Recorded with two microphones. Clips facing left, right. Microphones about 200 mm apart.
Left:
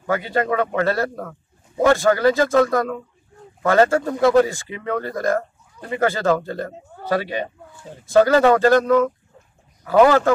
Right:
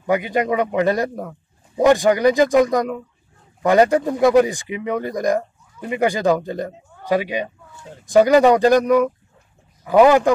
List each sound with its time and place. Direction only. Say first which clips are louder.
0.0 s speech: right 2 dB; 15° right (ahead or behind)